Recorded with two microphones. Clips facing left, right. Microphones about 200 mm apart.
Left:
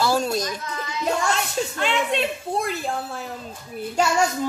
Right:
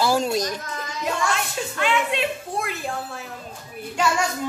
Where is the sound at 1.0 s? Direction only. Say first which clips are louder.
Left 2 dB; 35° left (ahead or behind).